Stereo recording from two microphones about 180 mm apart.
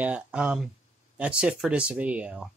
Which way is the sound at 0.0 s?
5° right (ahead or behind).